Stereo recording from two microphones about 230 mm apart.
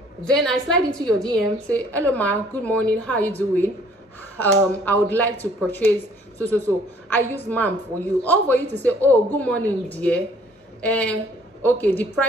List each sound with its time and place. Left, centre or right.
0.2 s a woman's voice: centre
7.1 s a woman's voice: centre